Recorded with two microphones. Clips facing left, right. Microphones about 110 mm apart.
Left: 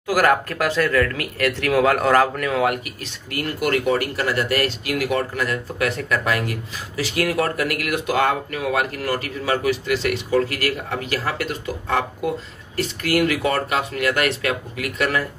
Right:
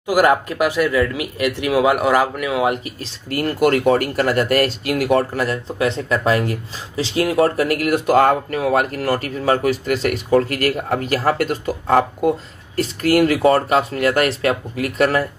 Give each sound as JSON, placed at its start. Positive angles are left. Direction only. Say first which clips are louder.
{"t": 0.0, "sound": "speech", "louder": "right 3 dB", "side_deg": -20}
{"t": 2.6, "sound": "speech", "louder": "right 2 dB", "side_deg": -25}